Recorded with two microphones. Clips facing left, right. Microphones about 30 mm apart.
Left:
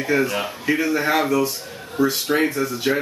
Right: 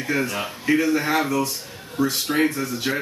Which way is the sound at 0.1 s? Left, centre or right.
Centre.